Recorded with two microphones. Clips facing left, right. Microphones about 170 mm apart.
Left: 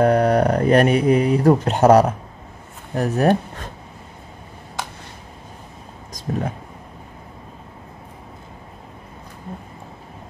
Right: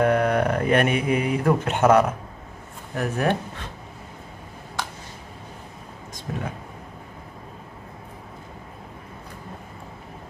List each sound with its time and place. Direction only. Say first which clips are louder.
0.0 s speech: left 4 dB; 40° left (ahead or behind)
6.1 s vehicle: left 6 dB; 40° left (ahead or behind)